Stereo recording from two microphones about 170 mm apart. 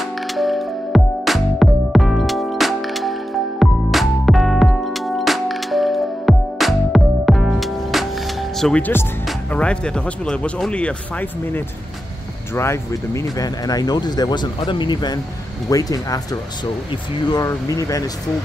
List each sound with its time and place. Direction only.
0.0 s music: centre (ahead or behind)
9.5 s speech: 5° left (ahead or behind)